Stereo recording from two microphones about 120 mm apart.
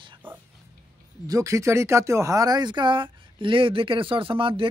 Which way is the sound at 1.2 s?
30° right (ahead or behind).